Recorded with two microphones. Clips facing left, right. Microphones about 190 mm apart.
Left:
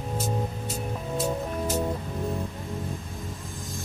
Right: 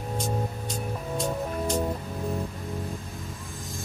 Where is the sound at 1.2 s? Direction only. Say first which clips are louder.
Left 1 dB; 5° left (ahead or behind).